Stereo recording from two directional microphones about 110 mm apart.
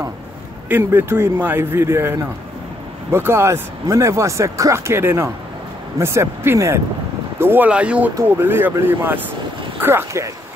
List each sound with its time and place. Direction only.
0.7 s speech: 20° right (ahead or behind)
8.1 s speech: 25° right (ahead or behind)